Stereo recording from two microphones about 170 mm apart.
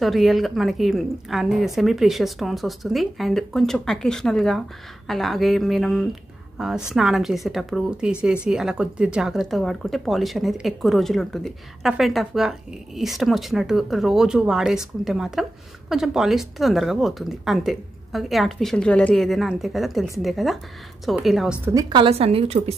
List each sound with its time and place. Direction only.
0.0 s speech: centre (ahead or behind)
21.6 s a woman's voice: 20° right (ahead or behind)